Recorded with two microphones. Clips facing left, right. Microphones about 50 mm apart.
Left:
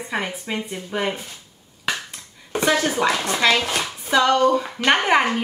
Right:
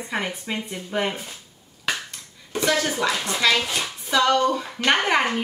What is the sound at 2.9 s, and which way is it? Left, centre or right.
Speech, left.